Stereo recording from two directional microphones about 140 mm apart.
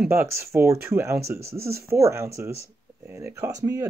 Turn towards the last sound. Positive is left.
turn(degrees=-25)  # may be behind; listen again after turning